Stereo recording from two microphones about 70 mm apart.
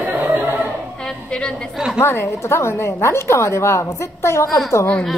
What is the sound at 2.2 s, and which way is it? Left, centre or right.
A woman's voice, left.